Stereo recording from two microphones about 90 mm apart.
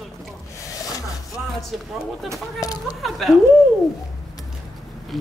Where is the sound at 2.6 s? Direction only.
45° left (ahead or behind).